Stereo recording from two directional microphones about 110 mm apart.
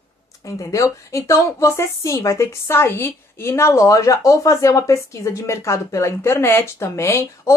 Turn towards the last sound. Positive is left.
turn(degrees=25)  # may be behind; listen again after turning